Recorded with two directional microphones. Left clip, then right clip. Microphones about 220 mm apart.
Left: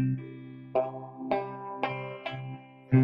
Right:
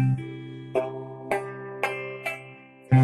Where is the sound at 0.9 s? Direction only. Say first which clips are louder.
Right 2 dB; 20° left (ahead or behind).